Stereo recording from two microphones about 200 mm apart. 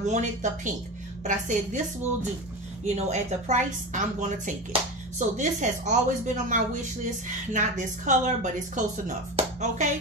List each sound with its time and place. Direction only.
0.0 s a woman's voice: 35° right (ahead or behind)
2.8 s a woman's voice: 35° right (ahead or behind)
5.4 s a woman's voice: 40° right (ahead or behind)